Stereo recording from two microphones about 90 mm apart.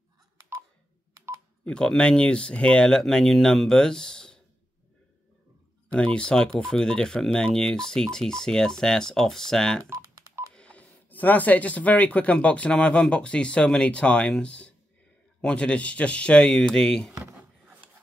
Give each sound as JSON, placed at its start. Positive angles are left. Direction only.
{"t": 1.6, "sound": "speech", "side_deg": 10}
{"t": 5.9, "sound": "speech", "side_deg": 10}
{"t": 9.8, "sound": "telephone dialing", "side_deg": -30}
{"t": 10.5, "sound": "speech", "side_deg": 15}